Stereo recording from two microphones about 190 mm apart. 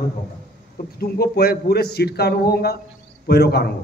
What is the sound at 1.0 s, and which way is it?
A man's voice, 55° left (ahead or behind).